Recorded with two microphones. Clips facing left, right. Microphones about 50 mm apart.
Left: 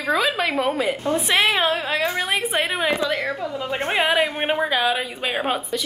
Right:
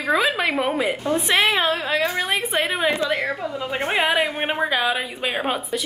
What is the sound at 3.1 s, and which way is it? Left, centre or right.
Speech, right.